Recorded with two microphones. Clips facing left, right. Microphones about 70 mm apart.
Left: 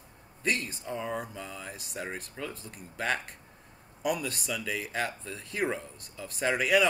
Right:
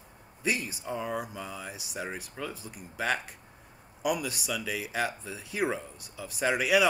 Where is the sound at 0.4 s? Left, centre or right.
Centre.